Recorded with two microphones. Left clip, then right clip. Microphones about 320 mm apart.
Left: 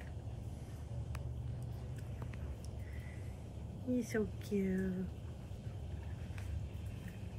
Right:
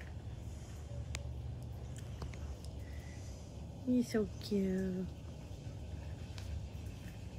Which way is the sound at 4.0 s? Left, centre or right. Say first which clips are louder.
Right 2 dB; right.